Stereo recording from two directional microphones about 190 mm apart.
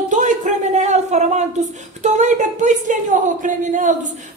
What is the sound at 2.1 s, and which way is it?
A woman's voice, 40° right (ahead or behind).